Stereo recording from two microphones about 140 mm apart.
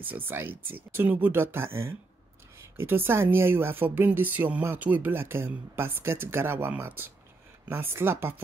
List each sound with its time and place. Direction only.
0.0 s speech: 15° right (ahead or behind)